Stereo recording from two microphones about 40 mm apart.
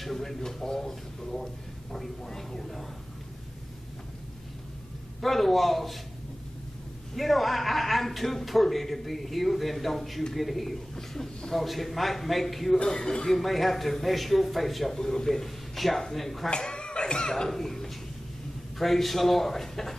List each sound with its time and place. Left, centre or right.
0.0 s speech: centre
5.2 s a man's voice: centre
7.2 s a man's voice: centre
12.8 s speech: centre
13.3 s a man's voice: centre
16.4 s a sound: left
17.5 s a man's voice: centre